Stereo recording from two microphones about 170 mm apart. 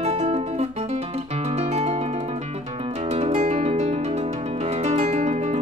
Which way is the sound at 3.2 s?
40° right (ahead or behind).